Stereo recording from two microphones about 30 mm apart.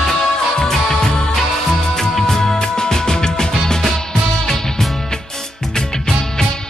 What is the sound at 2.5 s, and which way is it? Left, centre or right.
Music, left.